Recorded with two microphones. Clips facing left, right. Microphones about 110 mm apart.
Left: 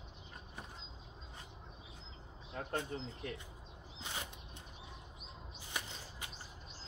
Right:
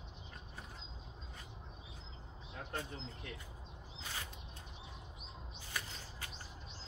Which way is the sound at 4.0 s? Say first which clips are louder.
Left 2 dB; 20° left (ahead or behind).